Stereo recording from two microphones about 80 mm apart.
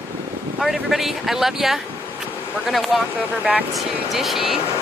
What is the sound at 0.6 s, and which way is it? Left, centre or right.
Speech, centre.